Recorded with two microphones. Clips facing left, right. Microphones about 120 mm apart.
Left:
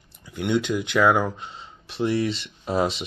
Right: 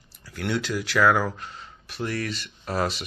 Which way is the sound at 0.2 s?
20° left (ahead or behind).